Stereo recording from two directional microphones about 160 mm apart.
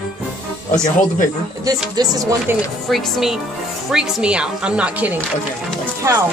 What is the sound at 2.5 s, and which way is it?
Speech, 15° right (ahead or behind).